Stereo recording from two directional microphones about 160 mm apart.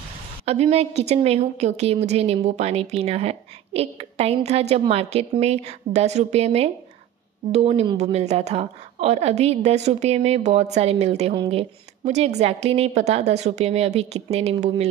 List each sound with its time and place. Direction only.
0.5 s a woman's voice: 40° right (ahead or behind)
11.3 s speech: 30° right (ahead or behind)
12.0 s a woman's voice: 45° right (ahead or behind)